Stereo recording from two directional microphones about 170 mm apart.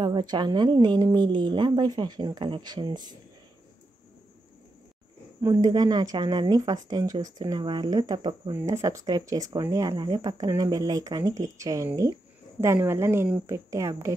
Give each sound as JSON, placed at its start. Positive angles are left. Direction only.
{"t": 0.0, "sound": "speech", "side_deg": -25}
{"t": 5.4, "sound": "speech", "side_deg": -20}